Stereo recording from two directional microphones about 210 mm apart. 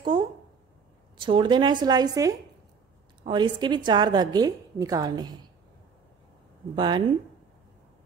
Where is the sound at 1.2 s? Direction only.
20° right (ahead or behind).